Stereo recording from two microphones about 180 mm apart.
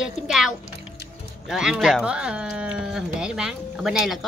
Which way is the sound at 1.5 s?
Centre (ahead or behind).